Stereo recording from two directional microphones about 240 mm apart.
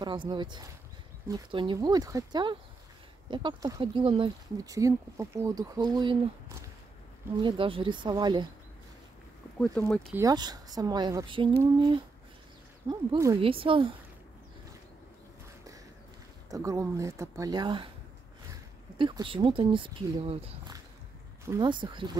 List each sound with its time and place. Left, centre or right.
0.0 s speech: centre
7.4 s speech: right
9.6 s speech: centre
10.1 s speech: centre
12.8 s speech: centre
16.4 s speech: centre
18.9 s speech: centre